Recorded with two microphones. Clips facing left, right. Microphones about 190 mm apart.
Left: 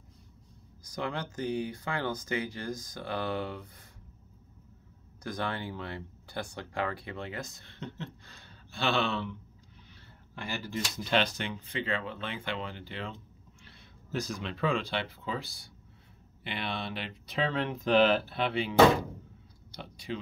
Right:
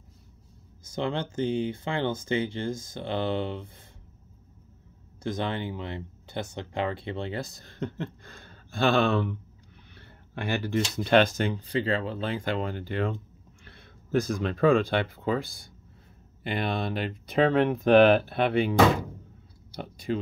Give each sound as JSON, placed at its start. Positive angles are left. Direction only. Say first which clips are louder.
{"t": 0.8, "sound": "speech", "louder": "right 6 dB", "side_deg": -25}
{"t": 5.2, "sound": "speech", "louder": "right 5 dB", "side_deg": -20}
{"t": 9.9, "sound": "a sound", "louder": "right 7 dB", "side_deg": -65}
{"t": 11.0, "sound": "speech", "louder": "right 8 dB", "side_deg": -50}